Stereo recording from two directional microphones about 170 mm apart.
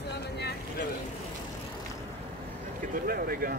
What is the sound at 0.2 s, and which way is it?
Vehicle, 70° left (ahead or behind).